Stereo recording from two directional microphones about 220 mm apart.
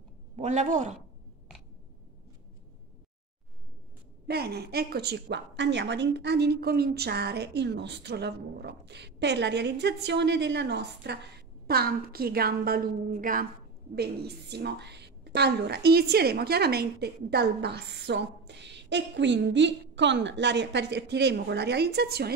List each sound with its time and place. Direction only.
0.4 s a man's voice: 35° right (ahead or behind)
4.3 s a woman's voice: 45° right (ahead or behind)